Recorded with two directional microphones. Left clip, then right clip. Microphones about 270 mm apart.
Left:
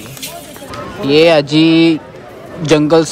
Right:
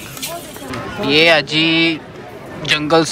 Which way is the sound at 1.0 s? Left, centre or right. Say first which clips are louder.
Left 3 dB; centre.